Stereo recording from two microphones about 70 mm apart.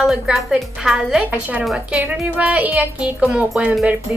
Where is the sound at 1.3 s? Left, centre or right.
Right.